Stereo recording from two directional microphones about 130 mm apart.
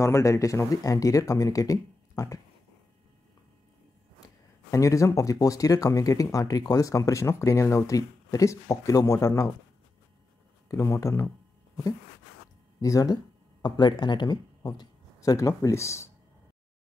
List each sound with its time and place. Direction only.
0.0 s speech: 20° left (ahead or behind)
4.6 s speech: 25° left (ahead or behind)
10.7 s speech: 25° left (ahead or behind)